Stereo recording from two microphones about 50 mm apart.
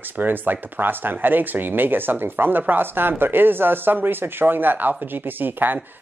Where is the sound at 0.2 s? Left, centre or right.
Right.